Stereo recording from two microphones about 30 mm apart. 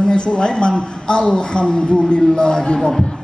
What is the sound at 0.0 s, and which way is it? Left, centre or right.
A man's voice, left.